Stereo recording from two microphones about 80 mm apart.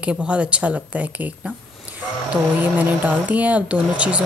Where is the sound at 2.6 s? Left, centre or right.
Right.